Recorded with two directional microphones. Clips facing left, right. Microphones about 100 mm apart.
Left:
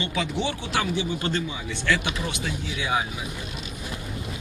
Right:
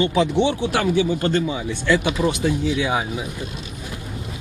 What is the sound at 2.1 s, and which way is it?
Speech, 35° right (ahead or behind).